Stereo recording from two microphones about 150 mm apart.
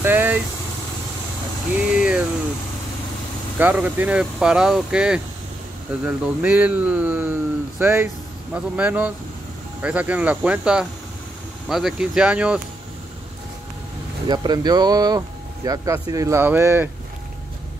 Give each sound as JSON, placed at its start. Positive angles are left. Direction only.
{"t": 0.0, "sound": "vehicle", "side_deg": -10}
{"t": 1.8, "sound": "a sound", "side_deg": -5}
{"t": 3.5, "sound": "speech", "side_deg": -10}
{"t": 14.2, "sound": "speech", "side_deg": -30}